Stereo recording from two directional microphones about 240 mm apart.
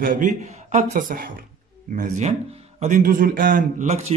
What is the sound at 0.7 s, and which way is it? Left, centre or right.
A woman's voice, right.